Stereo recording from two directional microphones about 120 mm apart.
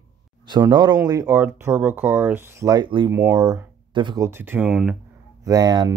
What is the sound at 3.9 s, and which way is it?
Speech, 40° right (ahead or behind).